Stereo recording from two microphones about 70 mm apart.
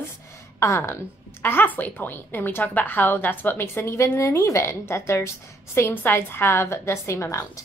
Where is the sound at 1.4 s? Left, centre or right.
Left.